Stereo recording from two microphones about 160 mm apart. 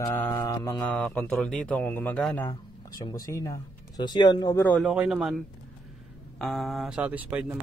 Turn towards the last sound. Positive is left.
turn(degrees=-10)  # may be behind; listen again after turning